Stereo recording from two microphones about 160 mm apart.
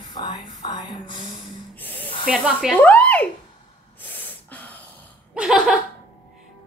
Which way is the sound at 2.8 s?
10° left (ahead or behind).